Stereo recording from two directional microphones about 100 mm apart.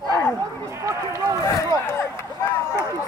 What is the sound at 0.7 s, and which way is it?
Speech, 30° right (ahead or behind).